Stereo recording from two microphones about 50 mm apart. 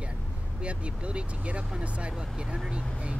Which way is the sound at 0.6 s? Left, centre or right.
Right.